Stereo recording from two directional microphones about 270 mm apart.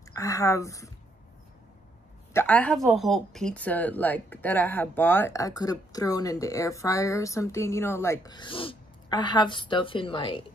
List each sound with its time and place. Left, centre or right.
0.1 s speech: centre
2.3 s speech: centre